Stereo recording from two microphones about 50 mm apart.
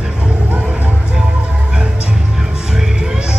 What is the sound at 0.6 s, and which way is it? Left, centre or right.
Music, right.